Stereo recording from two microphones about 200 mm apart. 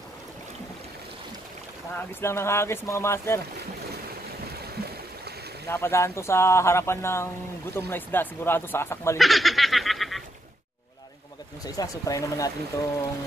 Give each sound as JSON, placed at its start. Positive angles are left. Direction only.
{"t": 2.0, "sound": "speech", "side_deg": 10}
{"t": 5.7, "sound": "speech", "side_deg": 10}
{"t": 9.2, "sound": "snicker", "side_deg": 0}
{"t": 11.6, "sound": "speech", "side_deg": 20}